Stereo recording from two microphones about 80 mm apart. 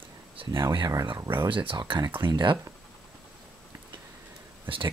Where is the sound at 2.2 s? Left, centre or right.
Right.